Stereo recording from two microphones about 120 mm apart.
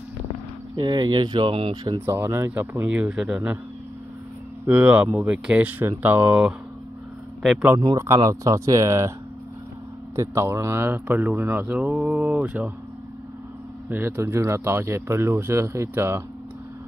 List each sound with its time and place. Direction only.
0.7 s speech: 35° right (ahead or behind)
2.0 s speech: 20° right (ahead or behind)
2.9 s speech: 5° right (ahead or behind)
4.6 s speech: 10° right (ahead or behind)
7.9 s speech: 25° right (ahead or behind)
10.1 s speech: 25° right (ahead or behind)
11.8 s speech: 5° right (ahead or behind)
13.8 s speech: 20° right (ahead or behind)